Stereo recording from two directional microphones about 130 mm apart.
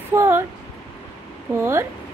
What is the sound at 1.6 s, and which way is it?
Speech, 20° right (ahead or behind).